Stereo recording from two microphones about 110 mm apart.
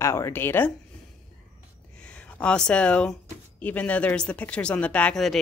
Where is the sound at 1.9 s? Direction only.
10° left (ahead or behind).